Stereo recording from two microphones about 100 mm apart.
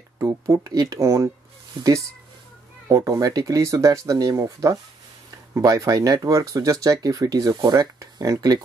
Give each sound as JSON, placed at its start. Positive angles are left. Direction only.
{"t": 0.2, "sound": "speech", "side_deg": -30}
{"t": 2.9, "sound": "speech", "side_deg": -30}